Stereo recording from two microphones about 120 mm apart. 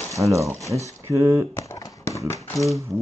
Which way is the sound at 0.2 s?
25° right (ahead or behind).